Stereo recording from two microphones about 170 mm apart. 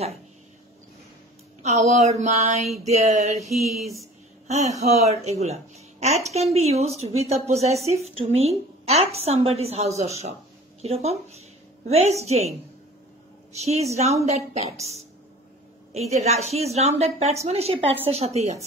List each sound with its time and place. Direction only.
1.6 s speech: 40° right (ahead or behind)